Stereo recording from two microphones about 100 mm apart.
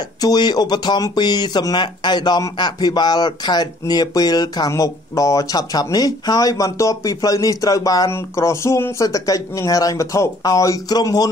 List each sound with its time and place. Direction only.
0.2 s speech: 45° left (ahead or behind)